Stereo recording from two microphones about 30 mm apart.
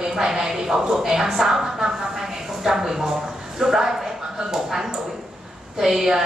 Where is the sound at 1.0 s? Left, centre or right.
Centre.